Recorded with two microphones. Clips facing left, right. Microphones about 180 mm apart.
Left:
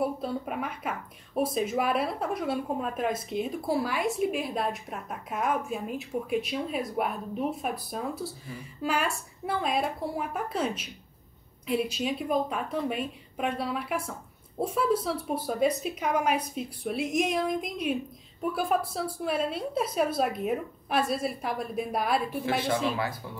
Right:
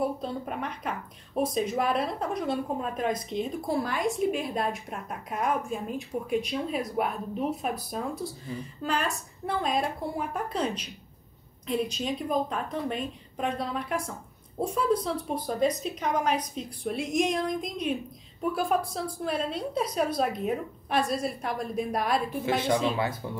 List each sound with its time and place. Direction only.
0.0 s a woman's voice: 5° left (ahead or behind)
23.2 s speech: 25° right (ahead or behind)